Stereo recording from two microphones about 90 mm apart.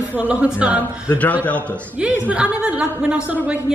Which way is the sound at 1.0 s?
15° left (ahead or behind).